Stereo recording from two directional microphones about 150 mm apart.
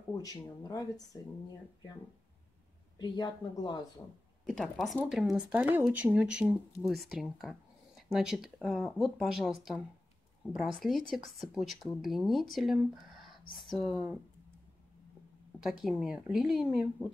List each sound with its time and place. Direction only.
0.2 s speech: 25° left (ahead or behind)
3.0 s speech: 30° left (ahead or behind)
4.5 s speech: centre (ahead or behind)
15.6 s speech: 5° right (ahead or behind)